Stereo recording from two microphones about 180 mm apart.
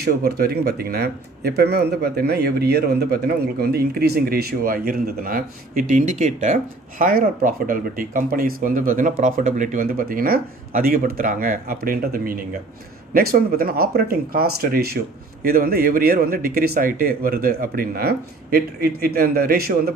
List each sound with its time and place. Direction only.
0.0 s speech: 60° right (ahead or behind)